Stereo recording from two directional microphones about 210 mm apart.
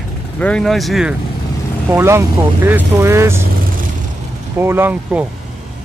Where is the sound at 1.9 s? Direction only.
10° right (ahead or behind).